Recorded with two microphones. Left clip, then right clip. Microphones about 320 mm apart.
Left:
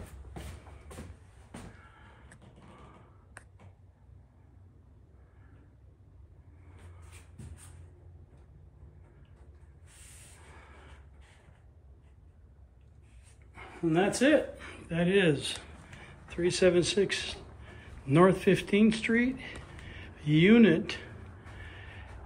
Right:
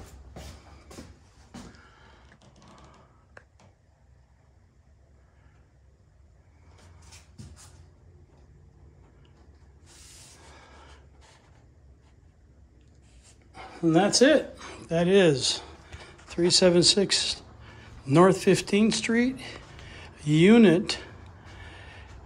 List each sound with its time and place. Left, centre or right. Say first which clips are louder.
13.7 s speech: right 7 dB; centre
21.5 s gasp: right 2 dB; centre